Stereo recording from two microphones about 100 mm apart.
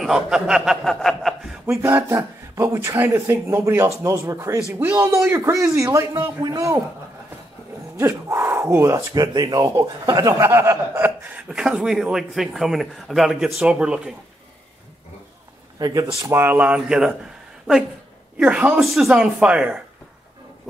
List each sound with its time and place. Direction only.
0.0 s a man's voice: 5° right (ahead or behind)
1.7 s speech: 25° right (ahead or behind)
8.0 s speech: 25° right (ahead or behind)
10.5 s speech: 30° right (ahead or behind)
11.1 s a man's voice: 15° right (ahead or behind)
15.8 s a man's voice: 40° right (ahead or behind); by 18.8 s 10° right (ahead or behind)
18.8 s a man's voice: centre (ahead or behind)